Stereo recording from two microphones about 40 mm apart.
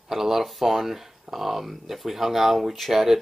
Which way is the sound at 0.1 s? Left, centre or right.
Centre.